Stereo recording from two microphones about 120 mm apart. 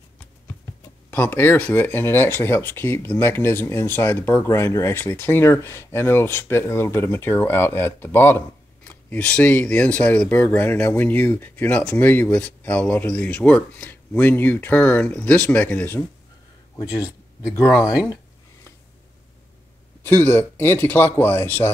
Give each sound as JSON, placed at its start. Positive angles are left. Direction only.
{"t": 1.1, "sound": "speech", "side_deg": 15}
{"t": 16.7, "sound": "speech", "side_deg": 25}
{"t": 17.8, "sound": "a sound", "side_deg": 25}
{"t": 20.0, "sound": "speech", "side_deg": 20}